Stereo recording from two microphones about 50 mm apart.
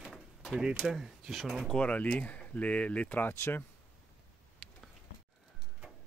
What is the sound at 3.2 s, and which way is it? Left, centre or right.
Speech, left.